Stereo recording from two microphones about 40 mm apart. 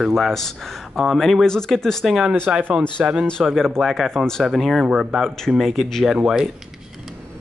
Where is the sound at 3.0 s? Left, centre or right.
Right.